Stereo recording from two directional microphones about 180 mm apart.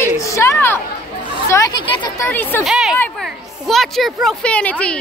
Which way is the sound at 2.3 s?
10° left (ahead or behind).